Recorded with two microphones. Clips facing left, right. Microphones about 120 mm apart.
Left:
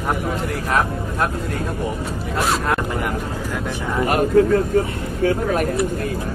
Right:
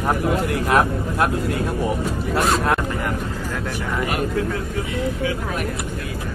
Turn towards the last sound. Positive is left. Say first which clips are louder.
# left 6 dB
turn(degrees=45)  # may be behind; listen again after turning